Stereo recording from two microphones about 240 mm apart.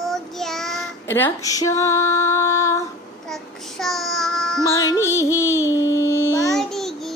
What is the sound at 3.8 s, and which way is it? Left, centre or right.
Child singing, centre.